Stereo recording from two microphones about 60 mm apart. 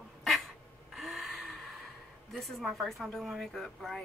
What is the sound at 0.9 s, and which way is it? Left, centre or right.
Vehicle, centre.